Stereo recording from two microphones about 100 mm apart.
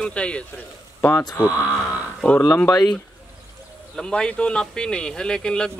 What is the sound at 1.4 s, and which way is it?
Speech, 20° left (ahead or behind).